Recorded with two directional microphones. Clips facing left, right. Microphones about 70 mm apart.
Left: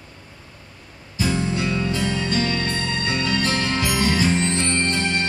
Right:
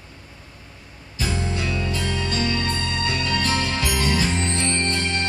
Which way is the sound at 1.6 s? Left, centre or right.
Left.